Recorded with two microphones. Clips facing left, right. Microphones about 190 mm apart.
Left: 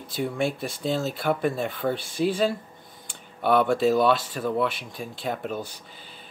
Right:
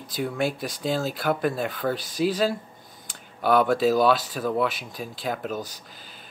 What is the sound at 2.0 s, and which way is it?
Speech, 40° right (ahead or behind).